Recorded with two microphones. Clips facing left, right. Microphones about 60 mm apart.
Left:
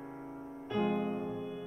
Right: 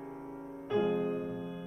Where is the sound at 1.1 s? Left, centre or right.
Centre.